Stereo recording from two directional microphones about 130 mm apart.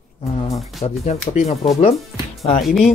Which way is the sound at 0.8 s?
50° left (ahead or behind).